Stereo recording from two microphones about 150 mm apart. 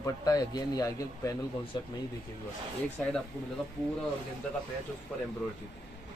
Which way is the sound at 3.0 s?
5° left (ahead or behind).